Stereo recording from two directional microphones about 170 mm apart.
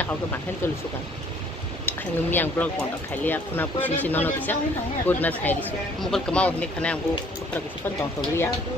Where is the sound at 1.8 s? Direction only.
10° left (ahead or behind).